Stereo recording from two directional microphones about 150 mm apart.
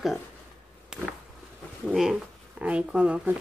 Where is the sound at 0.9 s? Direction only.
5° right (ahead or behind).